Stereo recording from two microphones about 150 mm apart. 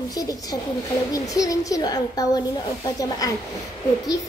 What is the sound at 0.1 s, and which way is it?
A woman's voice, 25° left (ahead or behind).